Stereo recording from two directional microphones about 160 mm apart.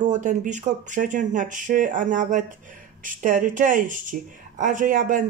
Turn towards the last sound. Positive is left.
turn(degrees=-55)  # may be behind; listen again after turning